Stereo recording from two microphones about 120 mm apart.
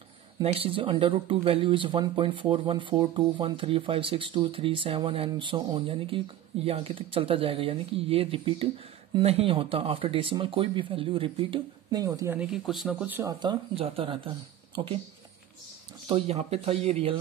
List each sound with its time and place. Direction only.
0.4 s speech: 50° right (ahead or behind)
11.9 s speech: 30° right (ahead or behind)
12.4 s speech: 5° right (ahead or behind)
13.2 s speech: 35° right (ahead or behind)
13.7 s speech: 50° right (ahead or behind)
16.1 s speech: 60° right (ahead or behind)